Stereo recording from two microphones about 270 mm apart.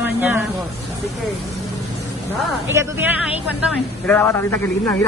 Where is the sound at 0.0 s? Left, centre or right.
Centre.